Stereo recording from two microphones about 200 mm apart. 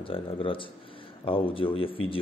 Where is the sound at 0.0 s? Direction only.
25° left (ahead or behind).